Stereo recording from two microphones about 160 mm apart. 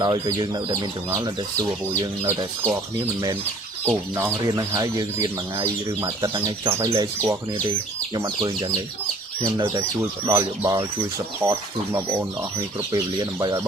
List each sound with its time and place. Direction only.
0.0 s speech: 30° right (ahead or behind)
9.8 s speech: 15° right (ahead or behind)